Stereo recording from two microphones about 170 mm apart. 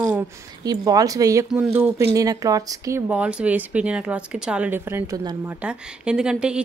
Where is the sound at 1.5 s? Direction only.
10° right (ahead or behind).